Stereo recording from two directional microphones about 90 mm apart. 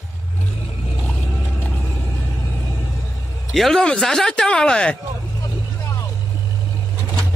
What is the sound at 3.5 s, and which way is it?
A man's voice, centre (ahead or behind).